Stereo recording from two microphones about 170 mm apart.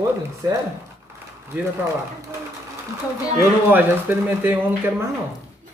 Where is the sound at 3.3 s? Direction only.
10° right (ahead or behind).